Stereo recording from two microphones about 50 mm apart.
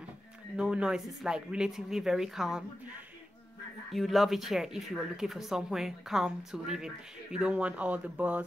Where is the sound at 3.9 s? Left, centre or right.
Centre; by 8.4 s right.